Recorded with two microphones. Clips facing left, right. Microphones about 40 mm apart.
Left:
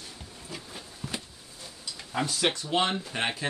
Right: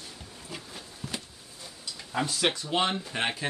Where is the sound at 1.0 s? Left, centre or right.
Centre.